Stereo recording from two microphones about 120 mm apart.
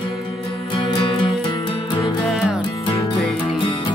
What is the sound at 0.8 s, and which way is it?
Music, 45° left (ahead or behind).